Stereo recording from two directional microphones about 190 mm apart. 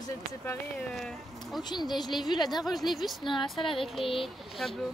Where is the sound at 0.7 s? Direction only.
5° left (ahead or behind).